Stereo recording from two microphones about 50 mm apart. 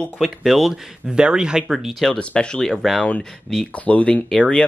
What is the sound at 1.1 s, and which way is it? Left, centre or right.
Speech, centre.